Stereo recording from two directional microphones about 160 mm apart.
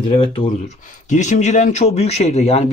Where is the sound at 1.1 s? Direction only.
50° left (ahead or behind).